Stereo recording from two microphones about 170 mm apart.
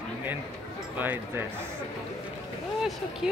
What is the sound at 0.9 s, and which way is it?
Speech, 10° right (ahead or behind).